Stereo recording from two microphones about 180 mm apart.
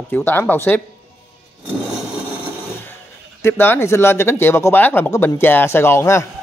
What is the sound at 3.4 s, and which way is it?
Speech, 15° left (ahead or behind).